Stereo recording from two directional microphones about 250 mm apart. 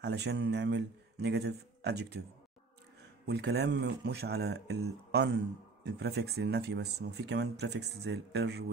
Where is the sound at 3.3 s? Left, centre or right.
Right.